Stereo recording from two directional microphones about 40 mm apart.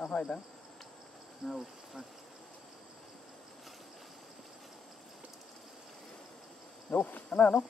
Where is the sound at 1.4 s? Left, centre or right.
Centre.